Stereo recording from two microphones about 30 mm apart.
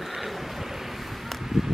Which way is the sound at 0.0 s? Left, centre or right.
Centre.